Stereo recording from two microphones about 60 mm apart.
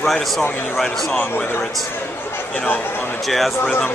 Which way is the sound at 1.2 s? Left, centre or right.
Left.